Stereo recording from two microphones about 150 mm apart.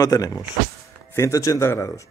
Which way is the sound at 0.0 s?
25° left (ahead or behind).